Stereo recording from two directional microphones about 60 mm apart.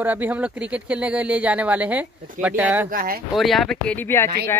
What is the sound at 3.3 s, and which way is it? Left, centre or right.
Speech, centre.